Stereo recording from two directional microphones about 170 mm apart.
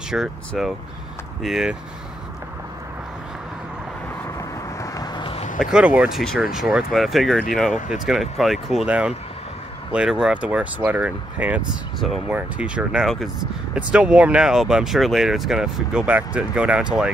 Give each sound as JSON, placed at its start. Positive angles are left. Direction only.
{"t": 0.1, "sound": "speech", "side_deg": 0}
{"t": 4.9, "sound": "a sound", "side_deg": 25}
{"t": 5.6, "sound": "speech", "side_deg": -5}